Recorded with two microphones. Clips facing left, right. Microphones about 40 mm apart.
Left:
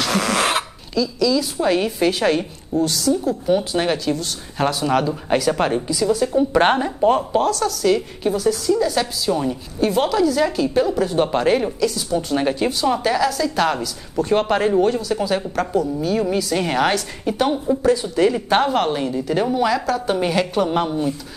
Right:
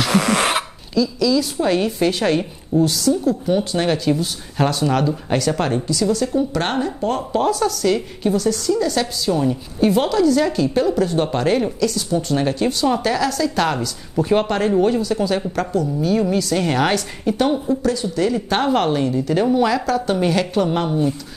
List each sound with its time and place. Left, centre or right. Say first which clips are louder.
0.0 s speech: right 2 dB; centre
4.1 s speech: right 3 dB; centre
4.6 s a woman's voice: even; centre
7.4 s speech: right 2 dB; centre
7.7 s a woman's voice: left 1 dB; centre
17.8 s a woman's voice: left 6 dB; centre
18.6 s a woman's voice: right 1 dB; centre